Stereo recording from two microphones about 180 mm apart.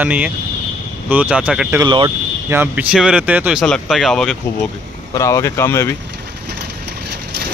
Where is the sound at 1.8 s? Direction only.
25° right (ahead or behind).